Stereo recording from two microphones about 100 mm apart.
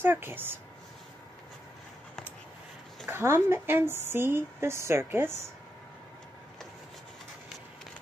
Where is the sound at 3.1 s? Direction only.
25° right (ahead or behind).